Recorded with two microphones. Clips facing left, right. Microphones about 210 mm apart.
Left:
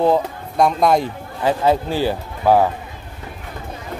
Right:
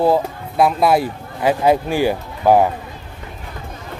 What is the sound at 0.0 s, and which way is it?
Speech, 5° right (ahead or behind).